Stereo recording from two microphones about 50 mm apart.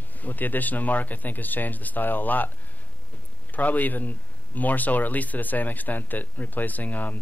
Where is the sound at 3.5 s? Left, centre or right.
Left.